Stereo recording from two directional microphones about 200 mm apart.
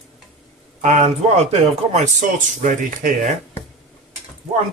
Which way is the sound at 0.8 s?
35° right (ahead or behind).